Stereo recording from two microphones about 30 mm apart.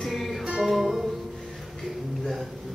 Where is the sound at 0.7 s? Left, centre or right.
Centre.